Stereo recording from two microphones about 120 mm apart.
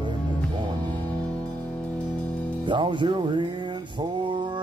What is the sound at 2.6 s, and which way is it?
Music, 40° right (ahead or behind).